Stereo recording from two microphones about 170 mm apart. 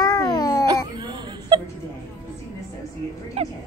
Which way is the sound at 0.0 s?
20° left (ahead or behind).